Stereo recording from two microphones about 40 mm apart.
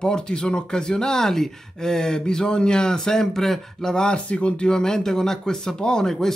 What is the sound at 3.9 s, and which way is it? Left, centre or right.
Speech, left.